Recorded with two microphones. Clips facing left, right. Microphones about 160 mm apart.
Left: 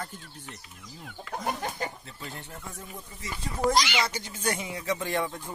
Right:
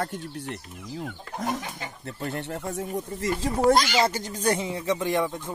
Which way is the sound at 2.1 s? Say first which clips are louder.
Right 10 dB; 60° right (ahead or behind).